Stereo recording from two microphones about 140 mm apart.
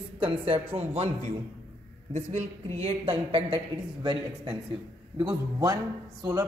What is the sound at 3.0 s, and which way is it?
A woman's voice, 40° right (ahead or behind).